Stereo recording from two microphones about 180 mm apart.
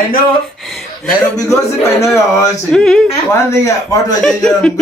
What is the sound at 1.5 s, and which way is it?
A woman's voice, 15° left (ahead or behind).